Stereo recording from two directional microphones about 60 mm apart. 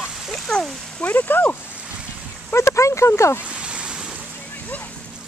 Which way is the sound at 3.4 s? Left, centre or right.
Centre.